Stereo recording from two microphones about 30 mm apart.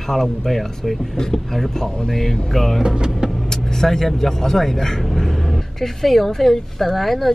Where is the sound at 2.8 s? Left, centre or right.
Right.